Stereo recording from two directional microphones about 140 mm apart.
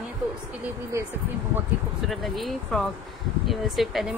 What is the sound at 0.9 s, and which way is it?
Speech, 20° right (ahead or behind).